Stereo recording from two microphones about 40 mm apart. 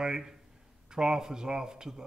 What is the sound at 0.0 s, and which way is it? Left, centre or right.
A man's voice, centre.